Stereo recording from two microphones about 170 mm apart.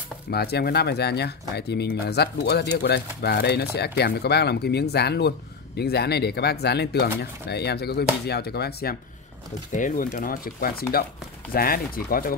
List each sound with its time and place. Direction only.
0.3 s speech: 70° left (ahead or behind)
9.7 s speech: 50° left (ahead or behind)